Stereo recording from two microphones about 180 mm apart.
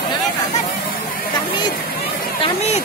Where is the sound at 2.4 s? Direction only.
35° left (ahead or behind).